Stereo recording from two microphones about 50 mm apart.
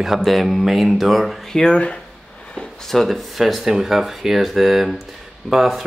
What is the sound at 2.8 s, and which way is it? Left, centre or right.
Speech, centre.